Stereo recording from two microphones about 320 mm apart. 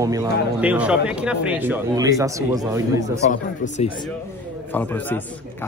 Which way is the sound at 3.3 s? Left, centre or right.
Left.